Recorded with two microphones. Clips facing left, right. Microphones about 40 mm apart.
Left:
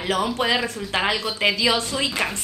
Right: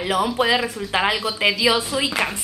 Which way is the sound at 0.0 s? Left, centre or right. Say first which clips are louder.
Right 2 dB; centre.